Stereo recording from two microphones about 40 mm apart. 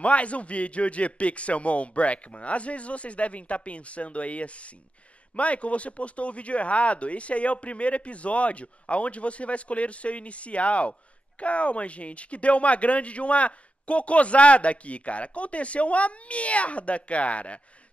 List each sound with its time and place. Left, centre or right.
0.0 s speech: left